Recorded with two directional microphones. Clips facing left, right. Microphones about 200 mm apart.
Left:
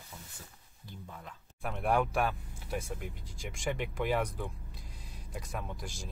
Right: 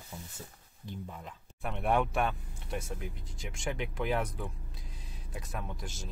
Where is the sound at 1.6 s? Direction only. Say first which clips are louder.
Even; centre (ahead or behind).